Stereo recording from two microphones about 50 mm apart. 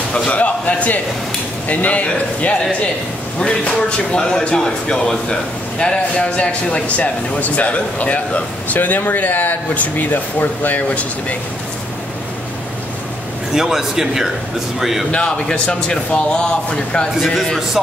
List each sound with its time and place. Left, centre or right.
0.1 s speech: left
4.1 s speech: centre
7.0 s speech: left
13.6 s a man's voice: centre
15.0 s speech: left
17.2 s speech: centre